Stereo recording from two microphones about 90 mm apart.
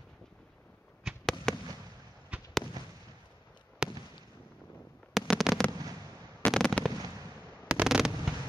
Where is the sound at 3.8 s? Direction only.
10° right (ahead or behind).